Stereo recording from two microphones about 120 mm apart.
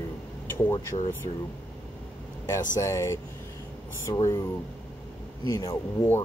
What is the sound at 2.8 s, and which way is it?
A man's voice, 25° left (ahead or behind).